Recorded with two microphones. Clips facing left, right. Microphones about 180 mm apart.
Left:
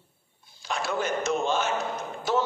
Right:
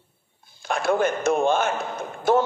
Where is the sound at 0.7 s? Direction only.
55° right (ahead or behind).